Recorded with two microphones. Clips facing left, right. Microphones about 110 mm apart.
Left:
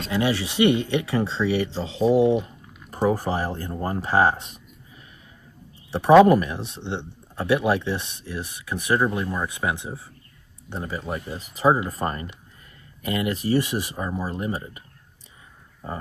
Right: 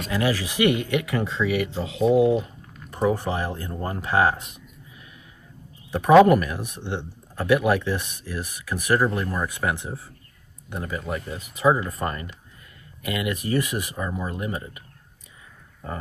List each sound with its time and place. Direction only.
0.1 s speech: 25° left (ahead or behind)
5.9 s a sound: 30° left (ahead or behind)
6.2 s speech: 25° left (ahead or behind)